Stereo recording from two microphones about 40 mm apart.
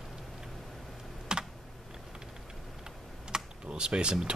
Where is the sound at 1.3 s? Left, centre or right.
Right.